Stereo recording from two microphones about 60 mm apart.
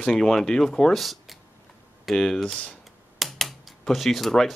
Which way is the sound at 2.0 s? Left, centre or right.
Centre.